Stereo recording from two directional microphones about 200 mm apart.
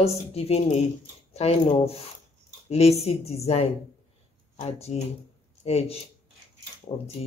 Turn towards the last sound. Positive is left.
turn(degrees=25)  # may be behind; listen again after turning